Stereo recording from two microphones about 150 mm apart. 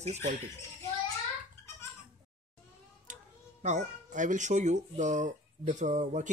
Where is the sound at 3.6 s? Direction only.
50° right (ahead or behind).